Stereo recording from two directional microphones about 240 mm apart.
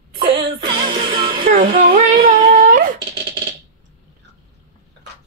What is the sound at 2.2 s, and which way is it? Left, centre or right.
Humming, right.